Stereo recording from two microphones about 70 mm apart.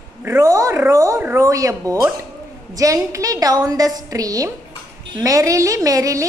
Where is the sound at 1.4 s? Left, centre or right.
Right.